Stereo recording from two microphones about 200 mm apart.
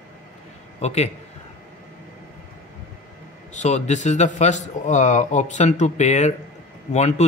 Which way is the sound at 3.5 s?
35° left (ahead or behind).